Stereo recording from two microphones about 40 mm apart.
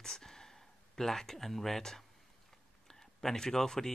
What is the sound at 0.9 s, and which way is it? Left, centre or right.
Speech, centre.